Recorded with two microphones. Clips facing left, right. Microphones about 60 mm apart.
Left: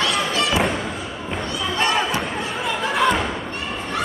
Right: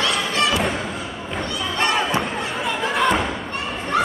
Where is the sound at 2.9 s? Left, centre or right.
Centre.